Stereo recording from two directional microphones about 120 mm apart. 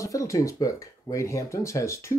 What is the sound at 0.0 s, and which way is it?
Speech, 25° left (ahead or behind).